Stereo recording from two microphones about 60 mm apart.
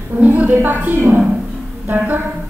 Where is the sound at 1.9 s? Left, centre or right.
Right.